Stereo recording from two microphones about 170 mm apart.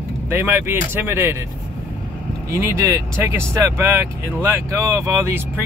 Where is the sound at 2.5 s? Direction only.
15° right (ahead or behind).